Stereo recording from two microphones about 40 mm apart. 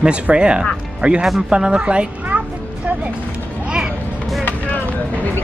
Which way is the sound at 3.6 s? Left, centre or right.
Right.